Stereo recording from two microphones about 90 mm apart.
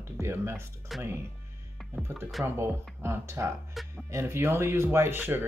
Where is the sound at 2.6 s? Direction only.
25° right (ahead or behind).